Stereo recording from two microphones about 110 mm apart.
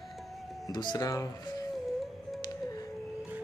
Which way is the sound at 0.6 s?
40° left (ahead or behind).